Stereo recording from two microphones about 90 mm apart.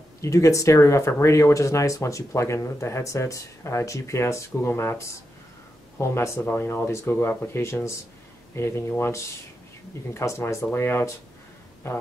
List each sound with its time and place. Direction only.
0.2 s speech: 35° left (ahead or behind)
6.5 s speech: 20° left (ahead or behind)